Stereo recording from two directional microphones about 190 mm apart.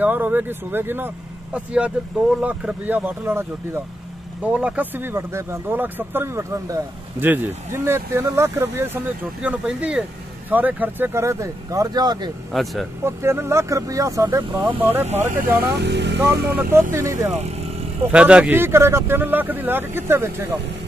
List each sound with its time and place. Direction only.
0.0 s speech: 10° right (ahead or behind)
12.5 s speech: centre (ahead or behind)
13.0 s speech: 15° right (ahead or behind)
15.0 s speech: 35° right (ahead or behind)
15.3 s speech: 10° right (ahead or behind)
15.8 s speech: 65° right (ahead or behind)
16.2 s speech: 10° right (ahead or behind)